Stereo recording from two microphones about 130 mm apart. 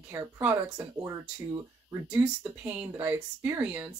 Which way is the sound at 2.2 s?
15° right (ahead or behind).